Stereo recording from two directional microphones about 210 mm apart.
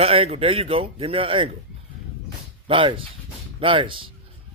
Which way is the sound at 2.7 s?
25° right (ahead or behind).